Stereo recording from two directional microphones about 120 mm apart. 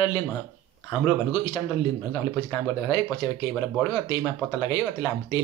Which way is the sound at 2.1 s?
25° left (ahead or behind).